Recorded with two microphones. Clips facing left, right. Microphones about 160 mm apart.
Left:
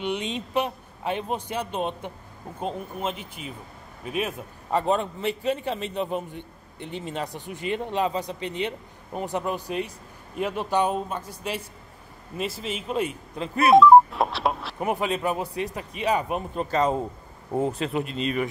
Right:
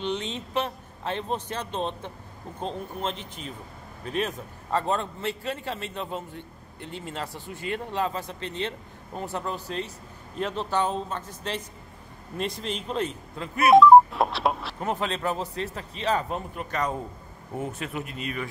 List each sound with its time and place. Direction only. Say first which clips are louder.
0.0 s a man's voice: left 2 dB; 15° left (ahead or behind)
13.7 s telephone dialing: even; centre (ahead or behind)
14.8 s a man's voice: left 6 dB; 10° left (ahead or behind)
16.5 s speech: left 8 dB; 25° left (ahead or behind)